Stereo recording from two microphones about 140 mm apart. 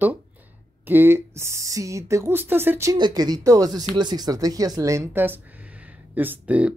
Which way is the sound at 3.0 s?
30° right (ahead or behind).